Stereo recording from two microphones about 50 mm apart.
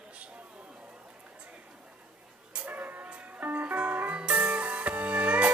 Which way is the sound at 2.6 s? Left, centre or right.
Right.